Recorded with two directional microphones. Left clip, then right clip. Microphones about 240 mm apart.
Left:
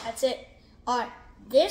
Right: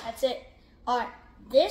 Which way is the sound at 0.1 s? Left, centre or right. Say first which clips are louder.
Left 1 dB; centre.